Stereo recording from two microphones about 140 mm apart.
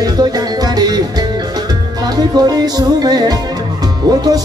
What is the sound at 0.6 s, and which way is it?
Music, 30° right (ahead or behind).